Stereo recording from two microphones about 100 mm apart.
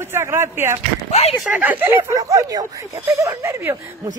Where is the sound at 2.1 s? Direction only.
35° right (ahead or behind).